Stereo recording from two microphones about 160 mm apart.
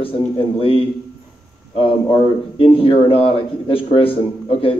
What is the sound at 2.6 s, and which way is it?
Speech, 35° left (ahead or behind).